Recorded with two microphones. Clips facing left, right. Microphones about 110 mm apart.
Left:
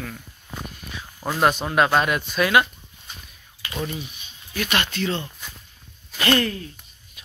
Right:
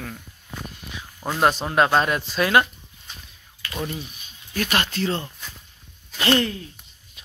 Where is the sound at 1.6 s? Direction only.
25° right (ahead or behind).